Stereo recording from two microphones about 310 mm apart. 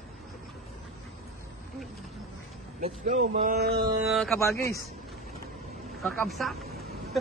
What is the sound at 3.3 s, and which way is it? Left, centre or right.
Mantra, right.